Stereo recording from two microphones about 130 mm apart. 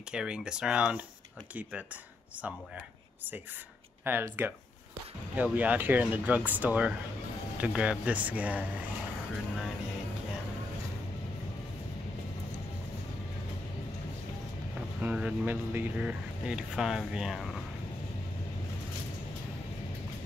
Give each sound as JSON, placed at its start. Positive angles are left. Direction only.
{"t": 0.1, "sound": "speech", "side_deg": -5}
{"t": 4.0, "sound": "speech", "side_deg": -15}
{"t": 15.0, "sound": "speech", "side_deg": -10}